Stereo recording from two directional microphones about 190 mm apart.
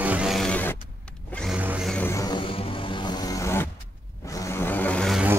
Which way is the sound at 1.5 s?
5° right (ahead or behind).